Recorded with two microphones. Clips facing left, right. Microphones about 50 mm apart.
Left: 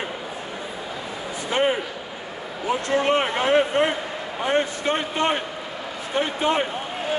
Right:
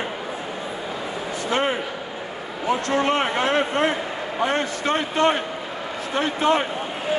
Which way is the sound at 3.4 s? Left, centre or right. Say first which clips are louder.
Left 1 dB; centre.